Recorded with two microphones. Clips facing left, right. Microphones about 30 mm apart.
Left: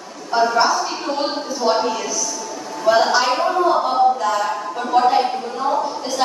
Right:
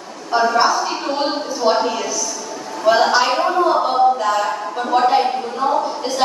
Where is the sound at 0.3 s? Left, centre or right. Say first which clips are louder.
Right 1 dB; centre.